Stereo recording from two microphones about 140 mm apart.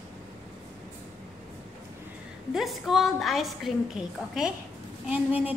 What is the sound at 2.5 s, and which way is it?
A woman's voice, centre (ahead or behind).